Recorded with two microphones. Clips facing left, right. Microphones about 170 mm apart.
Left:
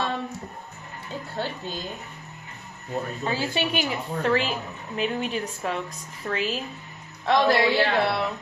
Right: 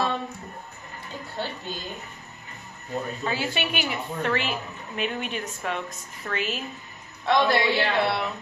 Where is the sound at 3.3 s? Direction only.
35° left (ahead or behind).